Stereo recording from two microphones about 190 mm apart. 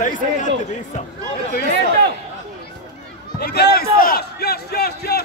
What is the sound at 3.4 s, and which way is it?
Speech, 55° left (ahead or behind).